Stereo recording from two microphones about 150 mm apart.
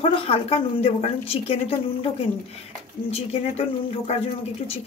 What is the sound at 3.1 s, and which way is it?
Speech, 45° left (ahead or behind).